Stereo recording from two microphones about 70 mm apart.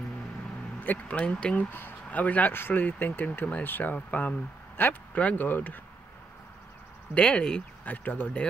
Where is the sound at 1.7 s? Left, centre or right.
Left.